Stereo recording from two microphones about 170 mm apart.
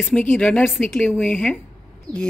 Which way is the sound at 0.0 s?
10° left (ahead or behind).